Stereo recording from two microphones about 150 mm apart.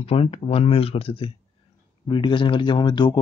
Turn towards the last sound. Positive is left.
turn(degrees=30)  # may be behind; listen again after turning